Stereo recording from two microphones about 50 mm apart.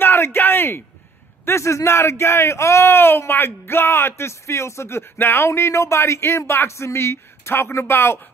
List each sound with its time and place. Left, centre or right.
0.0 s a sound: left
1.4 s speech: left
5.1 s speech: left